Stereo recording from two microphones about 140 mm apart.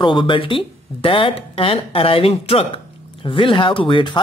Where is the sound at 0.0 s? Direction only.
35° left (ahead or behind).